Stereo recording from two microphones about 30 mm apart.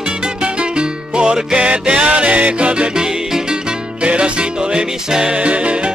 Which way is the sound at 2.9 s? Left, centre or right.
Right.